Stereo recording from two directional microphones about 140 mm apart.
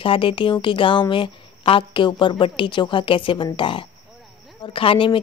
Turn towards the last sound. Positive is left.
turn(degrees=40)  # may be behind; listen again after turning